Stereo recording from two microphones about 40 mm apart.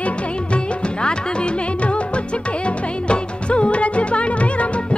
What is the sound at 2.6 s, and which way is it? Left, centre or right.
Music, left.